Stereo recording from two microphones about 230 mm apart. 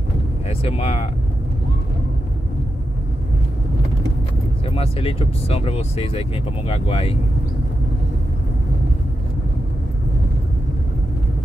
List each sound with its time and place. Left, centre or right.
0.5 s speech: left
4.6 s speech: left